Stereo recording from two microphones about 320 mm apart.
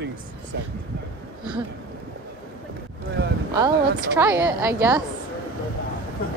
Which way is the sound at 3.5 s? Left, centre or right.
Centre.